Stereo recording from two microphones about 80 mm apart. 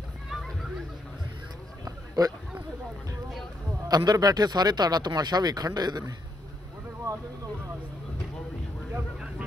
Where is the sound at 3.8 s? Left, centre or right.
Right.